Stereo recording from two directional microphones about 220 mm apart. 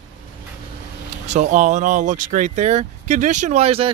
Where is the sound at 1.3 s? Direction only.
35° right (ahead or behind).